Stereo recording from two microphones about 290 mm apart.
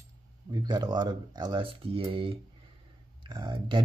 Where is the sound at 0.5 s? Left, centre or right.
Centre.